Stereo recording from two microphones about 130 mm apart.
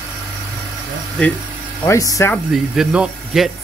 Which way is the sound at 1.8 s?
25° left (ahead or behind).